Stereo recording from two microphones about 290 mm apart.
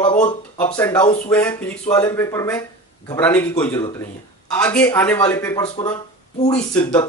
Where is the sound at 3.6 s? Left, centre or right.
Centre.